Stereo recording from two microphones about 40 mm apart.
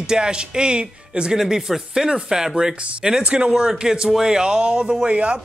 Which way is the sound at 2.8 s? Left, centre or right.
Right.